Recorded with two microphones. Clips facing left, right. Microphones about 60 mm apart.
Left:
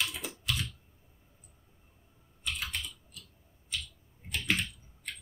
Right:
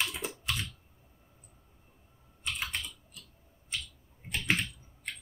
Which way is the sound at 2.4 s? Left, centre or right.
Right.